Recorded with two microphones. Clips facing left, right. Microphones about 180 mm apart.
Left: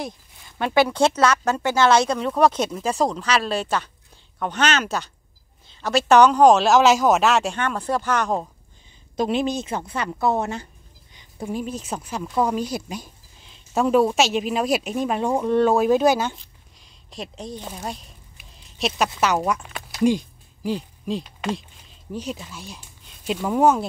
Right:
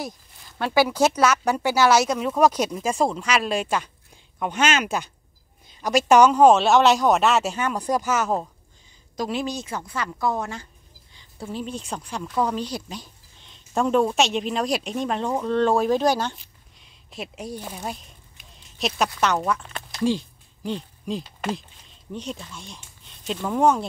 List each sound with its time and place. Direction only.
0.7 s a man's voice: 5° right (ahead or behind)
9.1 s a woman's voice: 20° left (ahead or behind)
11.1 s a sound: 15° left (ahead or behind)
11.8 s speech: 5° left (ahead or behind)
16.8 s a sound: 5° right (ahead or behind)
19.1 s speech: 10° left (ahead or behind)